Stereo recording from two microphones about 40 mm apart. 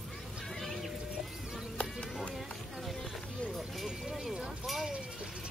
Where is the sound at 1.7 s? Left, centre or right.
Left.